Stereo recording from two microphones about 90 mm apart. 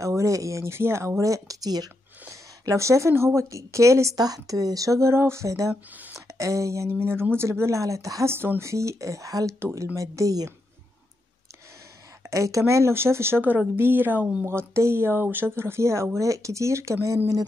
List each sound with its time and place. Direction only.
0.0 s speech: 35° right (ahead or behind)
2.6 s speech: 35° right (ahead or behind)
9.6 s speech: 30° right (ahead or behind)
12.3 s speech: 35° right (ahead or behind)